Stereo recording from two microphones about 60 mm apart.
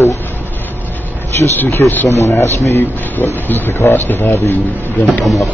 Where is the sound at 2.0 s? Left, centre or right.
Left.